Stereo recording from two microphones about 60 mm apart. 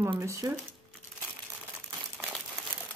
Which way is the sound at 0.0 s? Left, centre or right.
Right.